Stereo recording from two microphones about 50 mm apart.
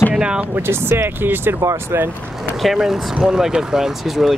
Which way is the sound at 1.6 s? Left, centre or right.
Right.